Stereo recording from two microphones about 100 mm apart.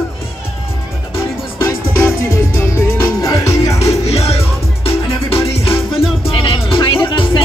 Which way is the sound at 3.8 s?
90° left.